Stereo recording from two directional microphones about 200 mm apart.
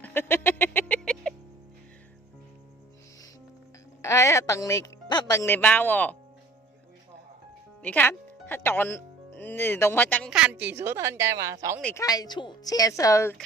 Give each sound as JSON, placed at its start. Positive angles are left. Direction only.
{"t": 0.0, "sound": "music", "side_deg": 10}
{"t": 4.0, "sound": "speech", "side_deg": 15}
{"t": 7.8, "sound": "speech", "side_deg": 10}
{"t": 10.3, "sound": "a woman's voice", "side_deg": -5}
{"t": 11.8, "sound": "speech", "side_deg": 15}